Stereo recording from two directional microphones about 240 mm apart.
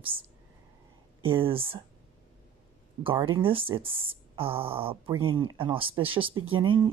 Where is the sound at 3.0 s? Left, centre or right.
Right.